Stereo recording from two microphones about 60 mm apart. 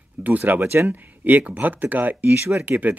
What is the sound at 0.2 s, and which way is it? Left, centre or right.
Speech, right.